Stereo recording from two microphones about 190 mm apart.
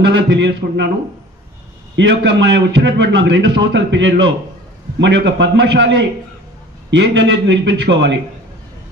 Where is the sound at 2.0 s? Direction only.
70° right (ahead or behind).